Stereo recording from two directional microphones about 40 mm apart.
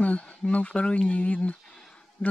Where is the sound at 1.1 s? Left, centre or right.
Left.